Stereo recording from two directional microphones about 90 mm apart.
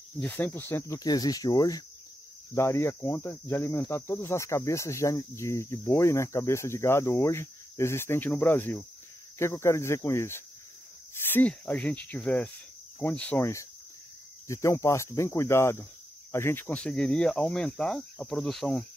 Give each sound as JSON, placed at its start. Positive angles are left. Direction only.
{"t": 0.2, "sound": "cricket", "side_deg": 20}
{"t": 0.9, "sound": "speech", "side_deg": 45}
{"t": 2.5, "sound": "speech", "side_deg": 30}
{"t": 2.9, "sound": "cricket", "side_deg": 25}
{"t": 9.4, "sound": "speech", "side_deg": 30}
{"t": 13.4, "sound": "speech", "side_deg": 35}
{"t": 16.6, "sound": "speech", "side_deg": 10}